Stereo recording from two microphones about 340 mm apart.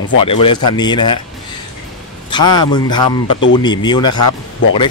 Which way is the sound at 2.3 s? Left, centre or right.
Centre.